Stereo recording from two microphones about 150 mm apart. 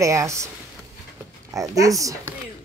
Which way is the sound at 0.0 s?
20° right (ahead or behind).